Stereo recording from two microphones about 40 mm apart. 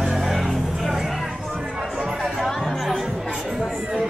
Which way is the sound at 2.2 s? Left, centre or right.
Centre.